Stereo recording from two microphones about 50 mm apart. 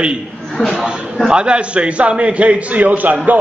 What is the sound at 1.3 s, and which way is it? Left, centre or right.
A man's voice, centre.